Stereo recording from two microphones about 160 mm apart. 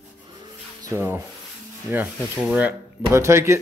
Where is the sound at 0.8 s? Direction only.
15° right (ahead or behind).